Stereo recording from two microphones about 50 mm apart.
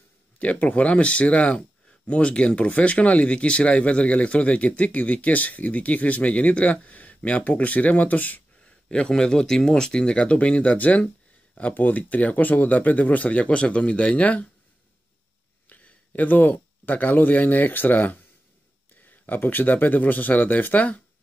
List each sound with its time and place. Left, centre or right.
0.4 s speech: left
8.9 s a man's voice: centre
11.7 s speech: left
15.7 s a man's voice: left